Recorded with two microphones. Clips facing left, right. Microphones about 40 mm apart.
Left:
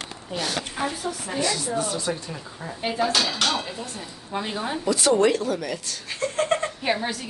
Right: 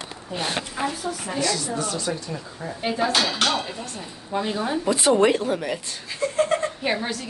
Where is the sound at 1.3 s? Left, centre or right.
Centre.